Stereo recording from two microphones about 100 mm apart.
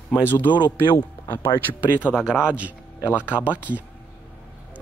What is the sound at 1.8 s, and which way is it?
A man's voice, 10° right (ahead or behind).